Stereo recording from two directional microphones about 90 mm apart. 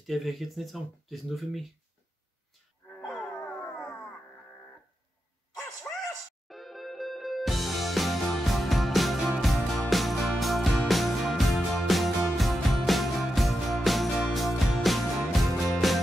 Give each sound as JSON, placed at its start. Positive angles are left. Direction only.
{"t": 0.0, "sound": "speech", "side_deg": 0}
{"t": 3.0, "sound": "wail", "side_deg": 5}
{"t": 3.4, "sound": "howl", "side_deg": 15}
{"t": 5.9, "sound": "a sound", "side_deg": 20}
{"t": 6.4, "sound": "music", "side_deg": 0}